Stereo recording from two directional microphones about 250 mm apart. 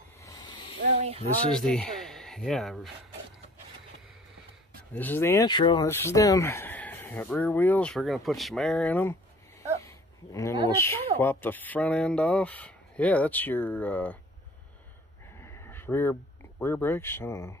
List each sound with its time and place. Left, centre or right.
0.2 s a sound: centre
1.0 s speech: right
1.5 s speech: centre
4.9 s speech: centre
9.8 s a sound: centre
10.7 s speech: centre
15.3 s speech: centre